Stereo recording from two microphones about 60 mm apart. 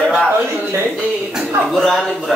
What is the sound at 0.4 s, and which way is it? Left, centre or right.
Speech, right.